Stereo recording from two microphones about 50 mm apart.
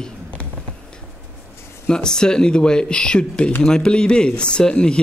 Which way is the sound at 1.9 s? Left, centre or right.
Centre.